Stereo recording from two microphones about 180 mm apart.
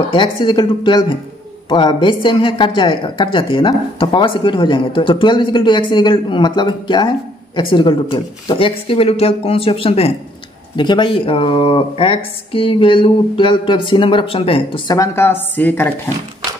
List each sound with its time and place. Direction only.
0.1 s speech: 25° left (ahead or behind)
15.0 s speech: 15° left (ahead or behind)